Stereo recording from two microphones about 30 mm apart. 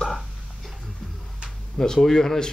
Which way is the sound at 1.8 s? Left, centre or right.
Centre.